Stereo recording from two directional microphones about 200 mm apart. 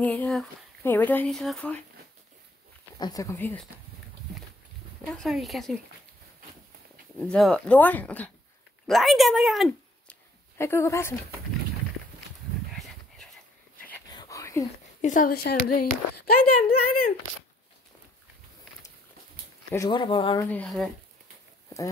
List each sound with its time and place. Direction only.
0.0 s speech: 5° left (ahead or behind)
3.0 s speech: 20° left (ahead or behind)
5.0 s speech: centre (ahead or behind)
7.2 s speech: 5° left (ahead or behind)
10.6 s speech: 15° left (ahead or behind)
12.7 s dog: centre (ahead or behind)
14.1 s whispering: 15° left (ahead or behind)
15.0 s speech: 40° left (ahead or behind)
19.7 s speech: 20° left (ahead or behind)
20.5 s speech: centre (ahead or behind)